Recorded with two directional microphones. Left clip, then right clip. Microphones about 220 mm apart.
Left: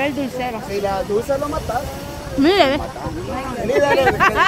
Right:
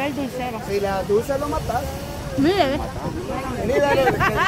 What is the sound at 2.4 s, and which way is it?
Speech, 25° left (ahead or behind).